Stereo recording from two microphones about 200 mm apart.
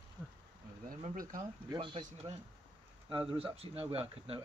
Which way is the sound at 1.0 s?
45° right (ahead or behind).